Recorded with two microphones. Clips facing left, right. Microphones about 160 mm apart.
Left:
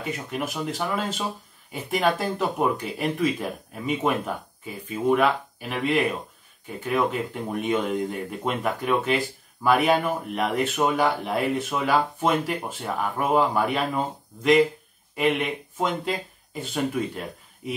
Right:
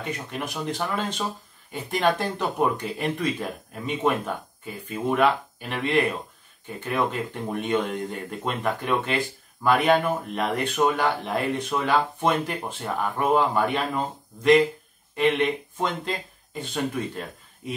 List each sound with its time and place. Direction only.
0.0 s speech: centre (ahead or behind)